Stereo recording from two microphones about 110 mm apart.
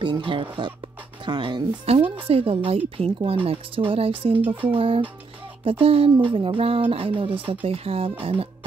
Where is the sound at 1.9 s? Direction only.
55° right (ahead or behind).